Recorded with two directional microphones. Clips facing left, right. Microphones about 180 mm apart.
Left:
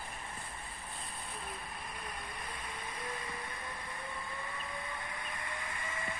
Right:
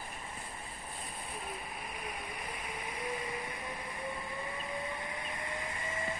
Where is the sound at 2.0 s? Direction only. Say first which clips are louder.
Right 3 dB; 15° right (ahead or behind).